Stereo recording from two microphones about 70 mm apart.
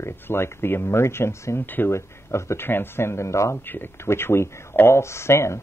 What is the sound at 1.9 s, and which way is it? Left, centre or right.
Speech, left.